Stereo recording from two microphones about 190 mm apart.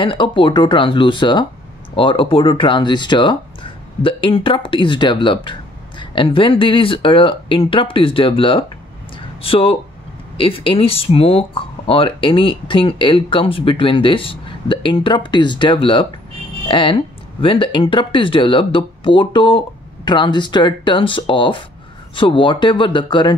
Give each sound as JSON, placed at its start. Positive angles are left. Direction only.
{"t": 0.0, "sound": "speech", "side_deg": 25}
{"t": 9.1, "sound": "a sound", "side_deg": 30}
{"t": 10.3, "sound": "speech", "side_deg": 30}